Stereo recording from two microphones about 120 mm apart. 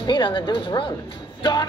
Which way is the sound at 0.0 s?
40° left (ahead or behind).